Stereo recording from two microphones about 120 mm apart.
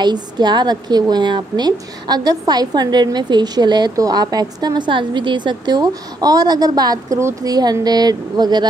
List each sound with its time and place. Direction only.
0.0 s a woman's voice: 35° right (ahead or behind)